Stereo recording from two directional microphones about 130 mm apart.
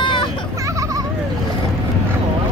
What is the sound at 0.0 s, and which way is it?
Vehicle, 40° left (ahead or behind).